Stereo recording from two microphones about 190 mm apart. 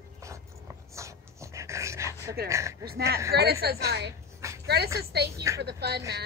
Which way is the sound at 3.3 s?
60° right (ahead or behind).